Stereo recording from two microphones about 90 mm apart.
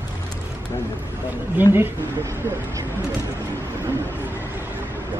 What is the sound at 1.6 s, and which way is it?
Speech, 25° right (ahead or behind).